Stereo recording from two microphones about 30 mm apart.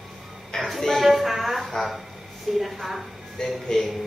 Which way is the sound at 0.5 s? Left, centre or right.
Left.